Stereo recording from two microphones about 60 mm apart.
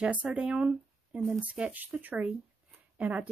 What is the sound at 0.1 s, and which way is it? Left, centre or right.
Speech, centre.